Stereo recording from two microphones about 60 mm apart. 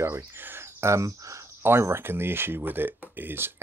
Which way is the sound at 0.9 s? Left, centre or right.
Right.